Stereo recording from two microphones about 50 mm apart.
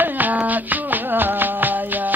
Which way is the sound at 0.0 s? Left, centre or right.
Right.